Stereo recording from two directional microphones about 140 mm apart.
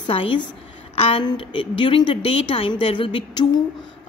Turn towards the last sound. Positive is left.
turn(degrees=35)  # may be behind; listen again after turning